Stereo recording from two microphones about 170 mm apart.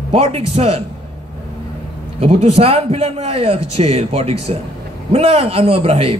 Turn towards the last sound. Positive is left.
turn(degrees=-35)  # may be behind; listen again after turning